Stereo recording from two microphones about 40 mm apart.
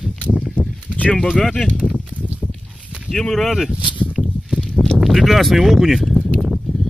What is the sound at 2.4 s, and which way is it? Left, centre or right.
Walk, centre.